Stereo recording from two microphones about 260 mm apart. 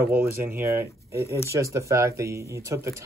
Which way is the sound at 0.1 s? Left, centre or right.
Centre.